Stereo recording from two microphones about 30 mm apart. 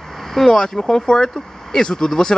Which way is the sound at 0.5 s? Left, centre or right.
Left.